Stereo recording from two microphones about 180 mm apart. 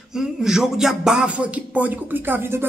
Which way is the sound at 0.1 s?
5° right (ahead or behind).